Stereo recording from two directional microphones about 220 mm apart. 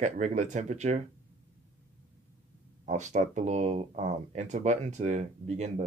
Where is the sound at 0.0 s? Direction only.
35° right (ahead or behind).